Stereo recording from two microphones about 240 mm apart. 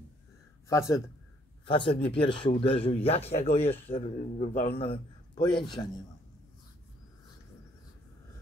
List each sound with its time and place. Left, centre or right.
0.7 s speech: centre
1.7 s a man's voice: left